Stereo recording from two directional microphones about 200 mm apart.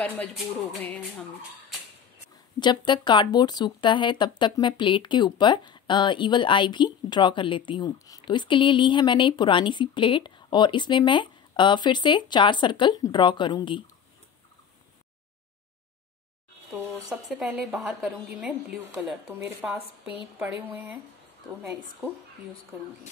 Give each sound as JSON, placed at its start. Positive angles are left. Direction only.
{"t": 0.7, "sound": "music", "side_deg": 10}
{"t": 2.6, "sound": "speech", "side_deg": 20}
{"t": 16.7, "sound": "a woman's voice", "side_deg": -5}